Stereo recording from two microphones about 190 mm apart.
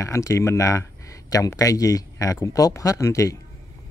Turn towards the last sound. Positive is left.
turn(degrees=15)  # may be behind; listen again after turning